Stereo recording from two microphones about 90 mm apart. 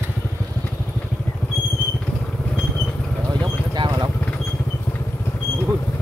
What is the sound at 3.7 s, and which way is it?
Vehicle, 55° right (ahead or behind).